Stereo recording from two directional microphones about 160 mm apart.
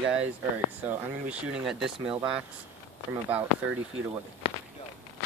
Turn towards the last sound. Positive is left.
turn(degrees=30)  # may be behind; listen again after turning